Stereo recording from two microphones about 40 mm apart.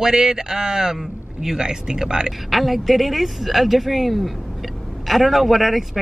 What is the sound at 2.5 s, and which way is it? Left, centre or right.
Speech, centre.